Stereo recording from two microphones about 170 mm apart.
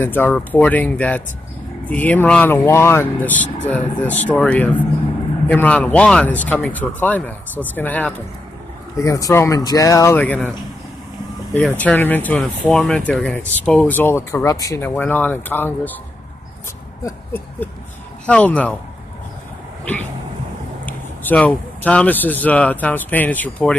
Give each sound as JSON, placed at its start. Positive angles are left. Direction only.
{"t": 0.0, "sound": "speech", "side_deg": 10}
{"t": 11.8, "sound": "speech", "side_deg": 10}
{"t": 17.0, "sound": "a sound", "side_deg": 10}
{"t": 18.2, "sound": "speech", "side_deg": 5}
{"t": 19.8, "sound": "a sound", "side_deg": 10}
{"t": 20.8, "sound": "speech", "side_deg": 10}